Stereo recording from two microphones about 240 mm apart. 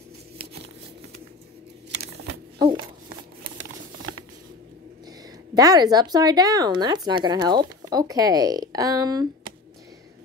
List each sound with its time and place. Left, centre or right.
5.5 s speech: centre